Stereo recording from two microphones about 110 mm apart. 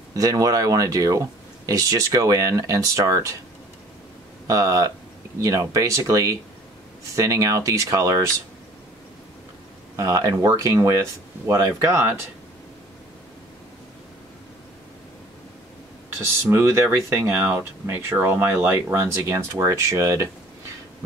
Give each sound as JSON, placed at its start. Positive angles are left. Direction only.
{"t": 0.1, "sound": "speech", "side_deg": -35}
{"t": 4.5, "sound": "speech", "side_deg": -30}
{"t": 9.9, "sound": "speech", "side_deg": -30}
{"t": 16.4, "sound": "speech", "side_deg": -25}